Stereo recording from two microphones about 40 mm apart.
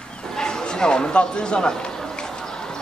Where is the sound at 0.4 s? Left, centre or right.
Left.